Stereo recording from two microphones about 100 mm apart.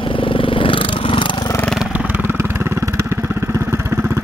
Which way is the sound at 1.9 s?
15° right (ahead or behind).